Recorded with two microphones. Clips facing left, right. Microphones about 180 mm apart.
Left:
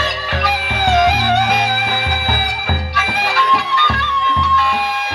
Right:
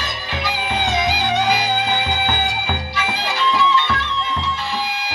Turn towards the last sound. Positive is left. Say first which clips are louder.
# even
turn(degrees=60)  # may be behind; listen again after turning